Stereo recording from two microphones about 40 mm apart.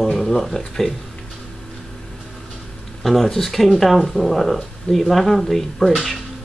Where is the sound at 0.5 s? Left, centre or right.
Centre.